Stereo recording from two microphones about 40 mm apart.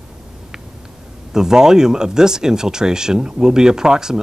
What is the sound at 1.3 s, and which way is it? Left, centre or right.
Speech, centre.